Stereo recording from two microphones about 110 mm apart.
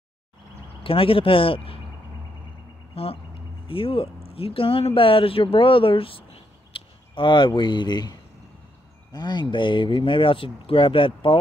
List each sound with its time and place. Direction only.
0.8 s speech: 55° left (ahead or behind)
2.9 s a sound: 60° left (ahead or behind)
3.6 s speech: 55° left (ahead or behind)